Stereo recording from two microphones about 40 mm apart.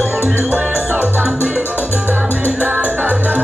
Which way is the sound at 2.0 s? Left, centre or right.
Right.